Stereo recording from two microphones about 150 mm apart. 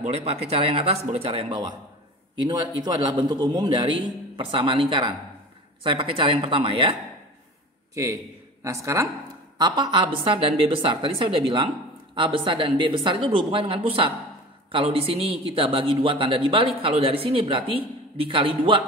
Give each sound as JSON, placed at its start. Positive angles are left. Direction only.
{"t": 0.0, "sound": "a man's voice", "side_deg": -45}
{"t": 7.9, "sound": "a man's voice", "side_deg": -20}